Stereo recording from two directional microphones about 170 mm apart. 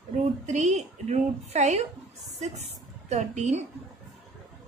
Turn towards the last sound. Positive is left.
turn(degrees=-40)  # may be behind; listen again after turning